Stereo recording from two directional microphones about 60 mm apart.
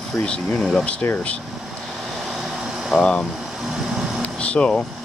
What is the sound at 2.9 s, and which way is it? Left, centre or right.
Speech, centre.